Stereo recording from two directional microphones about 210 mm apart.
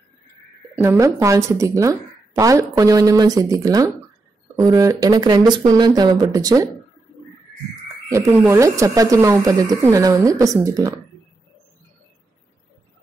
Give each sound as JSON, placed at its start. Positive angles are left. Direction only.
{"t": 0.7, "sound": "speech", "side_deg": -15}
{"t": 8.1, "sound": "speech", "side_deg": -15}